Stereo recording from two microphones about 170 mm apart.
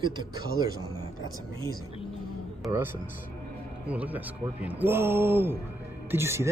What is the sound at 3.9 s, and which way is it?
Speech, 10° right (ahead or behind).